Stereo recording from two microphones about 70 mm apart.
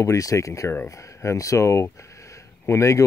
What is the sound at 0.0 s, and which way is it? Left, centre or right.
Speech, left.